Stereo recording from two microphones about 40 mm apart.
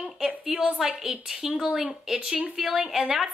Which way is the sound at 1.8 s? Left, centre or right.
Right.